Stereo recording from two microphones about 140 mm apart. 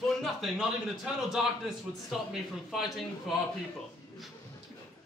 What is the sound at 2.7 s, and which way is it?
Speech, centre (ahead or behind).